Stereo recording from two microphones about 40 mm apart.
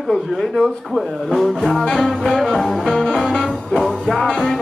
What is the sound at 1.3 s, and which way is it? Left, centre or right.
Music, centre.